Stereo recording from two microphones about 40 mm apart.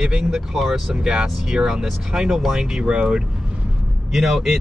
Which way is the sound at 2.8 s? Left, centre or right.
Right.